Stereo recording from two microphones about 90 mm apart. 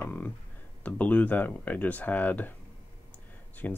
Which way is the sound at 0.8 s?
15° left (ahead or behind).